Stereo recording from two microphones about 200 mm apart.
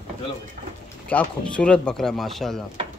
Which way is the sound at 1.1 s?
5° left (ahead or behind).